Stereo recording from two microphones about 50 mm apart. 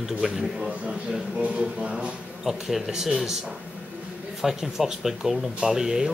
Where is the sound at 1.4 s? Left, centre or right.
Right.